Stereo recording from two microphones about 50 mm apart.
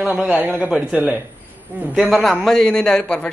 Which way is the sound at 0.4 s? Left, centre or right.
Right.